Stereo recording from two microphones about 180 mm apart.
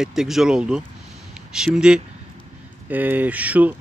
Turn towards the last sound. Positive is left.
turn(degrees=-10)  # may be behind; listen again after turning